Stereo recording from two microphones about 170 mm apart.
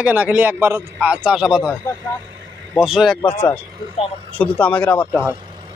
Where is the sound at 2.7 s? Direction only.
5° right (ahead or behind).